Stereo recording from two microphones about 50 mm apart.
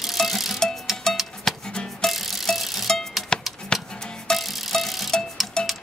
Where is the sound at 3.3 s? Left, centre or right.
Centre.